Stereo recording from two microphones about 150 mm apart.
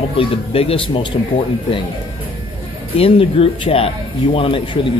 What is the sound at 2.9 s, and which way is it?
Speech, 40° left (ahead or behind).